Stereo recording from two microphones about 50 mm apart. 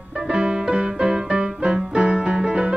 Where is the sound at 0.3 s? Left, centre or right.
Centre.